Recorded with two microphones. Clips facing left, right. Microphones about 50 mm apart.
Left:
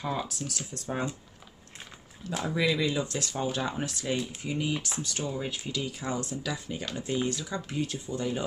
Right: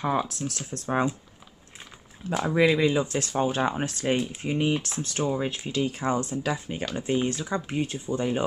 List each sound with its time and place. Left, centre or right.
0.4 s speech: right
2.2 s speech: right